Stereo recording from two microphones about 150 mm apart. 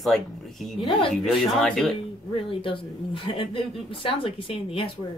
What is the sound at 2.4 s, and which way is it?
A woman's voice, 35° left (ahead or behind).